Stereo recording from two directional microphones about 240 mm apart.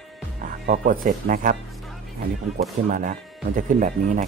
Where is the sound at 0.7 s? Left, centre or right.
Right.